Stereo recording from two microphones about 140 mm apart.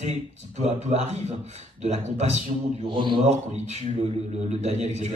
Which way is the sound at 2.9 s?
35° right (ahead or behind).